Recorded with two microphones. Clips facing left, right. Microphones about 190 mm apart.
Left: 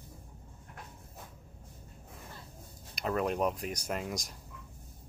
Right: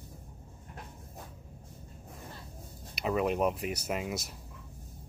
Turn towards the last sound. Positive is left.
turn(degrees=-5)  # may be behind; listen again after turning